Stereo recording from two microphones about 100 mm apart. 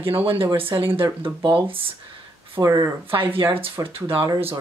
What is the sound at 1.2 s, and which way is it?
Speech, 55° right (ahead or behind).